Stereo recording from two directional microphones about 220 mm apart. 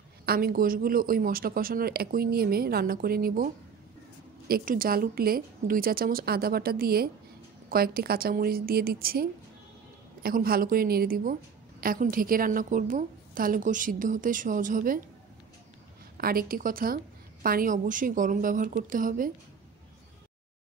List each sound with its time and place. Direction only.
0.2 s a woman's voice: 45° right (ahead or behind)
16.2 s a woman's voice: 40° right (ahead or behind)